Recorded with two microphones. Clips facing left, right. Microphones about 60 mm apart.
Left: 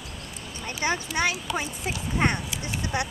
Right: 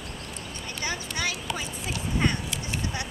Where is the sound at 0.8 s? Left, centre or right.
Left.